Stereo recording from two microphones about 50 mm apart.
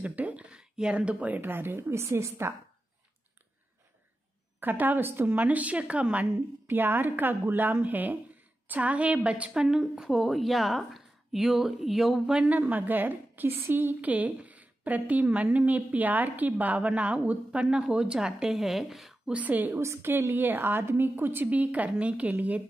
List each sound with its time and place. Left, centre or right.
0.0 s a sound: right
1.4 s a woman's voice: right
1.9 s a woman's voice: right
4.6 s a woman's voice: right
6.7 s a woman's voice: right
9.6 s a woman's voice: centre
12.4 s a woman's voice: right; by 18.6 s centre
18.6 s speech: centre
19.3 s a woman's voice: right
19.8 s a woman's voice: right
20.3 s a woman's voice: right
21.5 s a woman's voice: right